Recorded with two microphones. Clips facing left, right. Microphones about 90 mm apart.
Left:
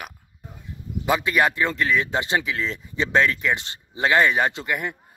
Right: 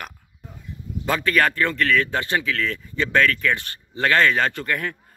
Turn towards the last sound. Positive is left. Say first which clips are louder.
# even
turn(degrees=15)  # may be behind; listen again after turning